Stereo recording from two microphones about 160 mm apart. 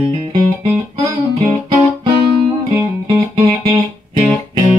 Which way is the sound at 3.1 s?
35° right (ahead or behind).